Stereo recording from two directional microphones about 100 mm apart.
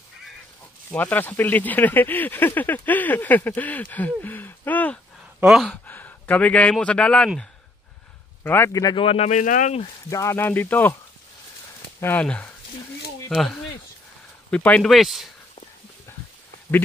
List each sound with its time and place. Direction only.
0.9 s speech: 15° left (ahead or behind)
5.4 s speech: 5° right (ahead or behind)
5.7 s a man's voice: 15° left (ahead or behind)
8.5 s speech: 25° left (ahead or behind)
8.9 s speech: 75° left (ahead or behind)
10.0 s speech: 30° left (ahead or behind)
12.0 s speech: 15° left (ahead or behind)
14.8 s speech: centre (ahead or behind)